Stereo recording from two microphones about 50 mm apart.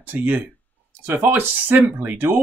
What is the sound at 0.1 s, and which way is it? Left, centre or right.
Speech, right.